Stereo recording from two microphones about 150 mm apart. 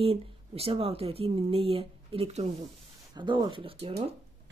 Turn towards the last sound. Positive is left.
turn(degrees=-40)  # may be behind; listen again after turning